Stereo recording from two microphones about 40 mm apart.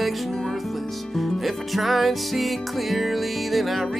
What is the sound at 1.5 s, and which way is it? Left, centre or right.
Music, centre.